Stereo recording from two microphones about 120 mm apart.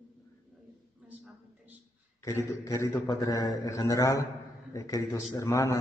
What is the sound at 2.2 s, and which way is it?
A man's voice, 25° left (ahead or behind).